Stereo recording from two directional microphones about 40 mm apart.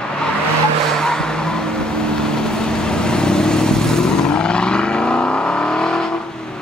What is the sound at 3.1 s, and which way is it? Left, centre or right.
Vehicle, centre.